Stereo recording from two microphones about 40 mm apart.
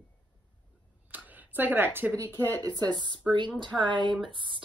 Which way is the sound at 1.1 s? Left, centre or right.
Right.